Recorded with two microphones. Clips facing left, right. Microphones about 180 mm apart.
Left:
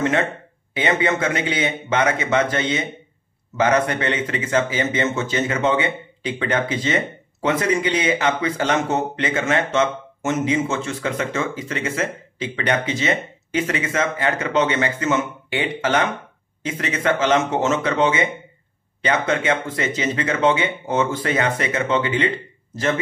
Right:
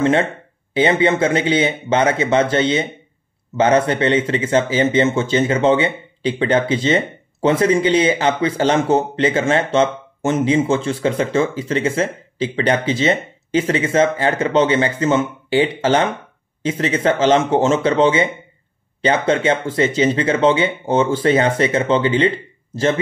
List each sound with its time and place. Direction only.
0.0 s a man's voice: 30° right (ahead or behind)